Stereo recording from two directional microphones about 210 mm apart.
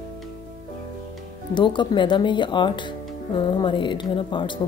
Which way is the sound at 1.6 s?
20° left (ahead or behind).